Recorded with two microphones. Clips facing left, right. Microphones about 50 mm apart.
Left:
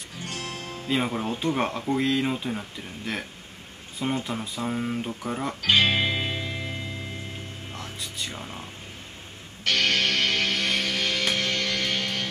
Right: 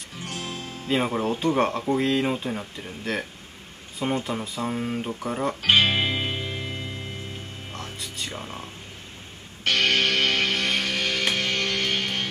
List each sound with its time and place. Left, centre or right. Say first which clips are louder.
0.4 s music: right 1 dB; left
0.8 s speech: right 3 dB; centre
5.8 s music: right 1 dB; centre
8.0 s music: even; centre
9.7 s music: right 2 dB; centre
11.5 s music: right 1 dB; right